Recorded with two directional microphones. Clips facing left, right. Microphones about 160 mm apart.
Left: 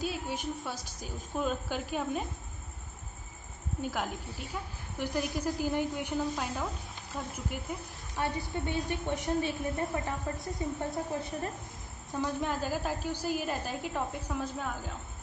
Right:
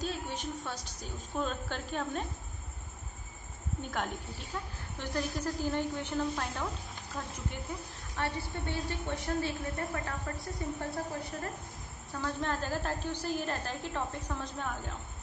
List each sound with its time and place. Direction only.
0.0 s a woman's voice: 10° left (ahead or behind)
3.9 s a woman's voice: 5° left (ahead or behind)
12.1 s a woman's voice: 15° left (ahead or behind)